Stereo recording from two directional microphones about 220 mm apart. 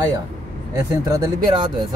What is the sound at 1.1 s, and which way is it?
Speech, 15° right (ahead or behind).